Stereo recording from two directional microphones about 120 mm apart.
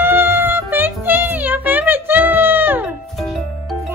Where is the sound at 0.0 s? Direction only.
20° right (ahead or behind).